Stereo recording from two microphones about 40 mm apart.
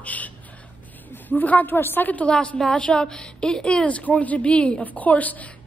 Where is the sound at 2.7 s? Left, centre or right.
Left.